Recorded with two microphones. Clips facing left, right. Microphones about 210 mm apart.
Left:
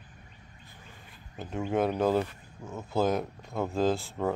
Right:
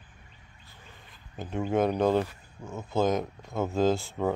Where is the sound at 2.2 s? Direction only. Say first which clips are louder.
Right 1 dB; 5° right (ahead or behind).